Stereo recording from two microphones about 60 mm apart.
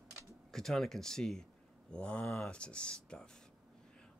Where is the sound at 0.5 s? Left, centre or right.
Centre.